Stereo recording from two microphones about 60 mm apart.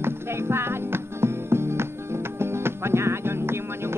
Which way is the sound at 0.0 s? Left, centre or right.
Right.